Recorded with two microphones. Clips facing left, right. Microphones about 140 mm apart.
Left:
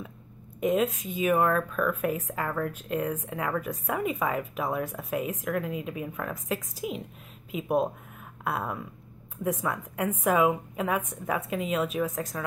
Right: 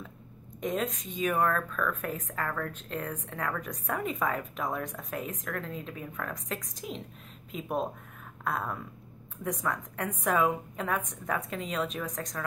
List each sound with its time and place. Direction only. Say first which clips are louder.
0.6 s speech: left 6 dB; 5° left (ahead or behind)